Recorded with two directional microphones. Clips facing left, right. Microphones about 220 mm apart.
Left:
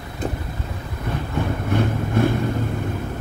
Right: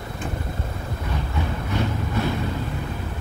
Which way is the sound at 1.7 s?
50° left (ahead or behind).